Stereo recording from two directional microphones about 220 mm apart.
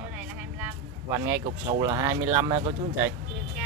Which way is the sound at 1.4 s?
15° right (ahead or behind).